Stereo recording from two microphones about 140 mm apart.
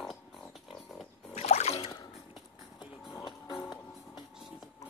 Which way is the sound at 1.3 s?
55° left (ahead or behind).